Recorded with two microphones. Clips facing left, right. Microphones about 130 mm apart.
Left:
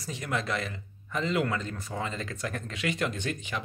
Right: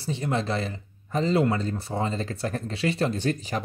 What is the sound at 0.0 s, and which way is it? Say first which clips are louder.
Speech: right 5 dB; 30° right (ahead or behind).